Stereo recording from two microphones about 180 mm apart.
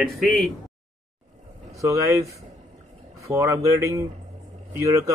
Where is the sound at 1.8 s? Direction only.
15° right (ahead or behind).